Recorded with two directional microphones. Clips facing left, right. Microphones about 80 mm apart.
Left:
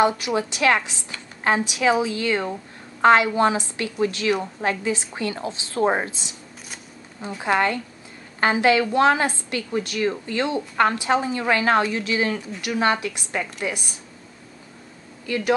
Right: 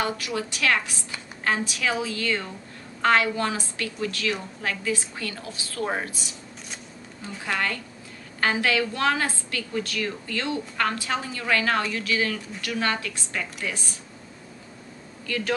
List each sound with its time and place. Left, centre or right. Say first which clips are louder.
0.0 s a woman's voice: left 8 dB; left
15.2 s a woman's voice: left 6 dB; left